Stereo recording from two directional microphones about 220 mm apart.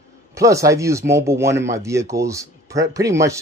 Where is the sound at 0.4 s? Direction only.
15° right (ahead or behind).